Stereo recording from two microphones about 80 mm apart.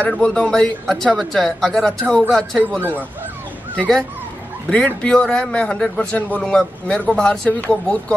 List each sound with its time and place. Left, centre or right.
0.0 s a man's voice: centre
4.6 s a man's voice: centre
6.4 s a man's voice: centre